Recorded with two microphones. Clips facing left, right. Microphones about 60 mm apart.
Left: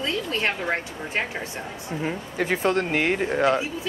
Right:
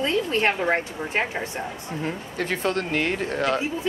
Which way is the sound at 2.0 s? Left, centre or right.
Centre.